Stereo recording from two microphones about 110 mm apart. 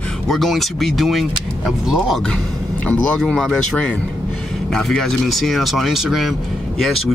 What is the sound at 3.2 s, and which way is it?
Speech, 5° left (ahead or behind).